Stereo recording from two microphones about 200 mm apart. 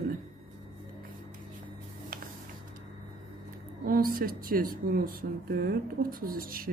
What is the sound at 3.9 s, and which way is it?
Speech, 45° right (ahead or behind).